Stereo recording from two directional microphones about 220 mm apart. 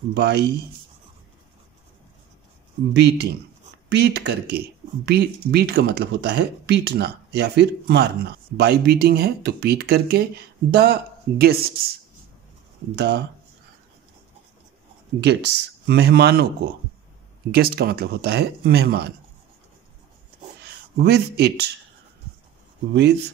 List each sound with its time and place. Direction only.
0.1 s speech: 50° right (ahead or behind)
2.9 s speech: 50° right (ahead or behind)
12.9 s speech: 50° right (ahead or behind)
15.1 s speech: 50° right (ahead or behind)
17.5 s speech: 45° right (ahead or behind)
21.0 s speech: 50° right (ahead or behind)